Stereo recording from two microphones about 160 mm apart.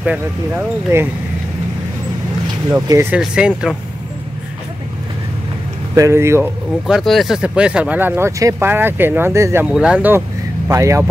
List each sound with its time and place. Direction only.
0.0 s speech: 10° right (ahead or behind)
2.9 s speech: 15° right (ahead or behind)
3.2 s speech: 5° right (ahead or behind)
5.9 s speech: 20° right (ahead or behind)
6.9 s speech: centre (ahead or behind); by 9.7 s 15° right (ahead or behind)
9.7 s speech: 5° right (ahead or behind)
10.7 s speech: 20° right (ahead or behind)